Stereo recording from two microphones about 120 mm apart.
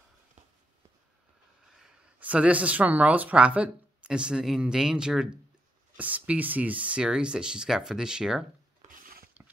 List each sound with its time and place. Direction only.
1.8 s speech: 10° right (ahead or behind)
9.4 s mechanisms: 15° right (ahead or behind)